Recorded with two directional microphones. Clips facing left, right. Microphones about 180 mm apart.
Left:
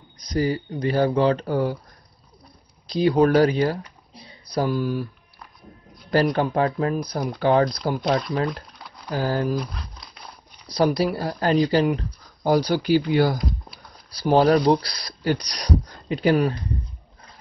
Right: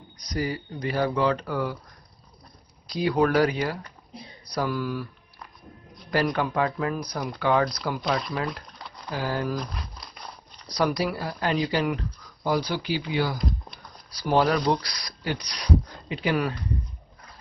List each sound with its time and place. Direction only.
0.2 s speech: 25° left (ahead or behind)
2.9 s speech: 25° left (ahead or behind)
6.3 s speech: 35° left (ahead or behind)
8.7 s typing: centre (ahead or behind)
9.1 s speech: 35° left (ahead or behind)
9.6 s crumpling: centre (ahead or behind)
10.7 s speech: 30° left (ahead or behind)
13.4 s a sound: centre (ahead or behind)
14.1 s speech: 35° left (ahead or behind)